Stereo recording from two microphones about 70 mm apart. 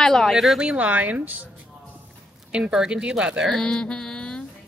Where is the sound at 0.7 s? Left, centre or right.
Centre.